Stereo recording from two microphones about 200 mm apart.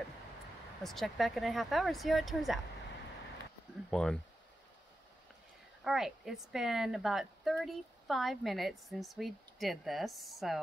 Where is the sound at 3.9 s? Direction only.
5° left (ahead or behind).